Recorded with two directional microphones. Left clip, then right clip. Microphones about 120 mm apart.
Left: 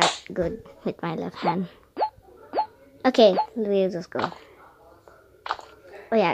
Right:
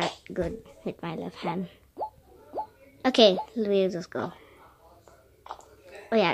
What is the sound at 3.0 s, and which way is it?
A child's voice, centre (ahead or behind).